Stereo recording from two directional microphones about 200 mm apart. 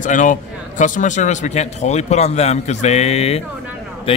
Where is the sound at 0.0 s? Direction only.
40° left (ahead or behind).